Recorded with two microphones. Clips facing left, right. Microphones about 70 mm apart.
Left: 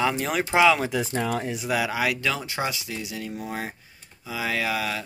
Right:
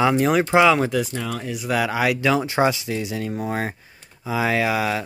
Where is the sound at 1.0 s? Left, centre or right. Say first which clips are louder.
Left 1 dB; left.